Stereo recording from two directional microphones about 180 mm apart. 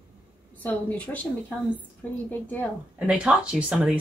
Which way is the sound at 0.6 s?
10° left (ahead or behind).